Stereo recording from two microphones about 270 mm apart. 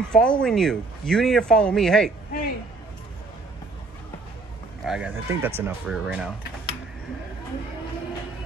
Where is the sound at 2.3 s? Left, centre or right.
Left.